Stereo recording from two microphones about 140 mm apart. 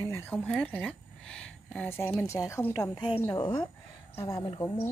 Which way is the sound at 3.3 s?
35° left (ahead or behind).